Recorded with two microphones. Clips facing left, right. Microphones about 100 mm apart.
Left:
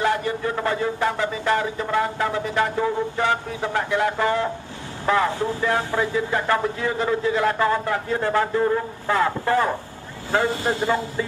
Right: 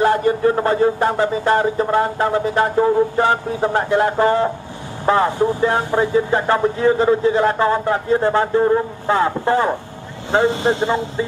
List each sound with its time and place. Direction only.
0.0 s speech: 40° right (ahead or behind); by 11.2 s 25° right (ahead or behind)